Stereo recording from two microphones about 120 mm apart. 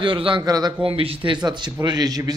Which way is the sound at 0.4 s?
30° right (ahead or behind).